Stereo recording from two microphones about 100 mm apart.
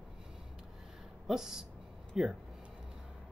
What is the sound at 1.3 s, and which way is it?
Speech, 5° right (ahead or behind).